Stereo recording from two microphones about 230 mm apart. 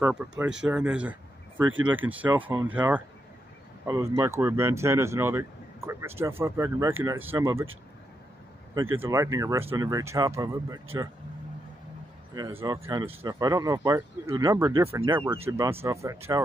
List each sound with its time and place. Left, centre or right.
0.0 s speech: centre
9.0 s speech: centre
12.4 s speech: centre